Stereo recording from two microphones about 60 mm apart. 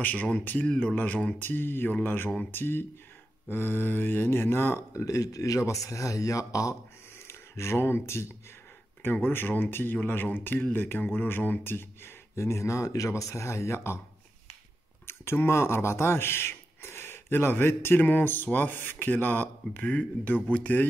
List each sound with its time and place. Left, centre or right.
0.0 s speech: left
4.9 s speech: left
7.2 s speech: left
9.1 s speech: left
15.0 s speech: left